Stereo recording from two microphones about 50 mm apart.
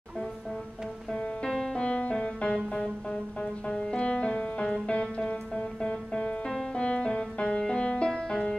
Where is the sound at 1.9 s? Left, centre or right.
Left.